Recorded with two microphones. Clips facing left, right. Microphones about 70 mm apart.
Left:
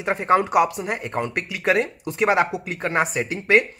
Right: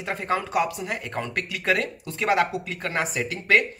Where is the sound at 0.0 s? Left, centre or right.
Left.